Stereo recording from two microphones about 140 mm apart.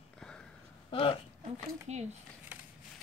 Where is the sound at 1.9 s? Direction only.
50° right (ahead or behind).